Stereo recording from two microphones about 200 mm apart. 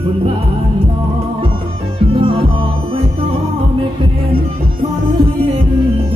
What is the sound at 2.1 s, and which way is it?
Music, 25° right (ahead or behind).